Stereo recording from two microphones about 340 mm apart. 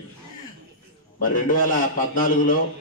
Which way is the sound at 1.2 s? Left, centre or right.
Left.